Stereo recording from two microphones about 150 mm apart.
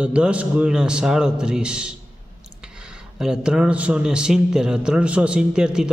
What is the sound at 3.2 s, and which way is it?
A man's voice, 5° right (ahead or behind).